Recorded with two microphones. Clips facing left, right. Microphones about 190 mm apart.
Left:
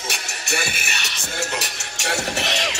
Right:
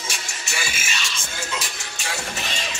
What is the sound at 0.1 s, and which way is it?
Music, 60° left (ahead or behind).